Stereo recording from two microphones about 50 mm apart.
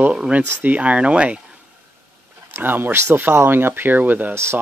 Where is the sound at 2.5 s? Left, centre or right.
Right.